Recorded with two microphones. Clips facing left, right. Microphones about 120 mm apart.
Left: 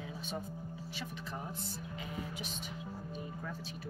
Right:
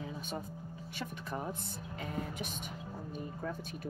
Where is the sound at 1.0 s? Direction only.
55° right (ahead or behind).